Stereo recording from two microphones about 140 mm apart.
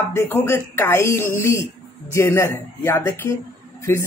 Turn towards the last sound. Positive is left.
turn(degrees=20)  # may be behind; listen again after turning